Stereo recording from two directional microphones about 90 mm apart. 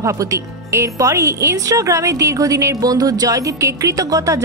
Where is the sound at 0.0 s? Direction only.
35° right (ahead or behind).